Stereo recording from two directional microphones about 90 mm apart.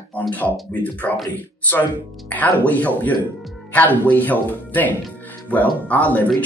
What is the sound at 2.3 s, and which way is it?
Speech, 20° left (ahead or behind).